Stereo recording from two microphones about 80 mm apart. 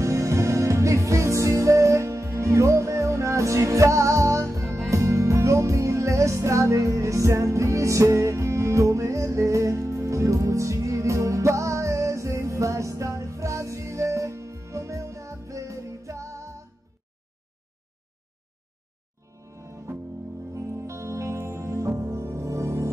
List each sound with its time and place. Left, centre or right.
0.0 s music: right
20.5 s music: right